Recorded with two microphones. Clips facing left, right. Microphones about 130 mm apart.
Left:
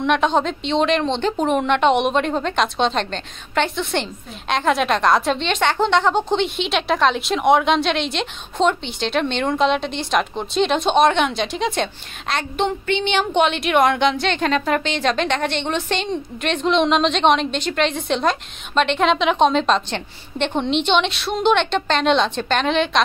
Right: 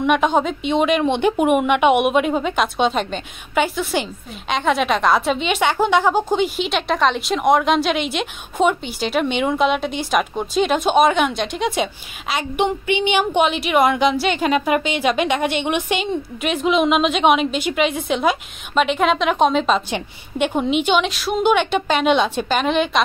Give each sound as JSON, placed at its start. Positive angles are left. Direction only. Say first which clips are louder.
{"t": 0.0, "sound": "a woman's voice", "louder": "right 1 dB", "side_deg": -5}